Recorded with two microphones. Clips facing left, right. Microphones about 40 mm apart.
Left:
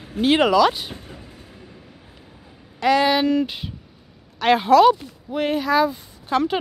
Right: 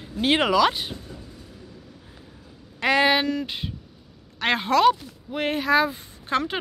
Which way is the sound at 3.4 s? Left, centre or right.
Centre.